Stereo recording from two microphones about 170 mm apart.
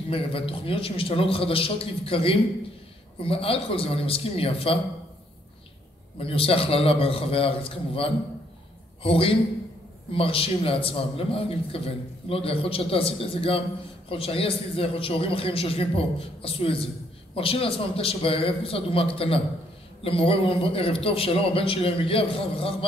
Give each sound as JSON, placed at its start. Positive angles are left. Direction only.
{"t": 0.1, "sound": "a man's voice", "side_deg": 35}
{"t": 6.1, "sound": "a man's voice", "side_deg": 35}